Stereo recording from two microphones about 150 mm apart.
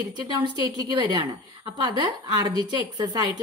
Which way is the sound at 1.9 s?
35° right (ahead or behind).